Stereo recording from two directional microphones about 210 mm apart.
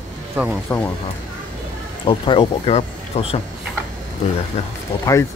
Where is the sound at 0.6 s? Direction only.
10° left (ahead or behind).